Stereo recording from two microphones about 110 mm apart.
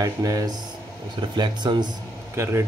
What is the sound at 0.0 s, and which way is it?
Speech, 30° right (ahead or behind).